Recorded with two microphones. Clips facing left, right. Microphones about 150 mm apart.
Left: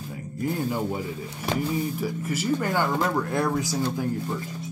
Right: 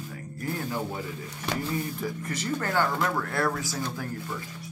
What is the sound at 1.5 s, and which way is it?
Speech, 10° left (ahead or behind).